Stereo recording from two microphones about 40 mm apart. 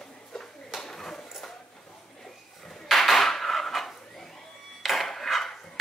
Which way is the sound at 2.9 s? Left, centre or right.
Centre.